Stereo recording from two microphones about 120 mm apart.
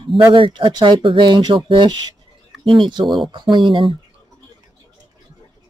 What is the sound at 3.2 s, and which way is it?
Speech, 40° right (ahead or behind).